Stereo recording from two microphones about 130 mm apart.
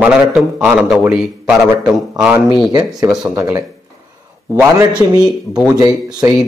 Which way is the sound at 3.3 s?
20° right (ahead or behind).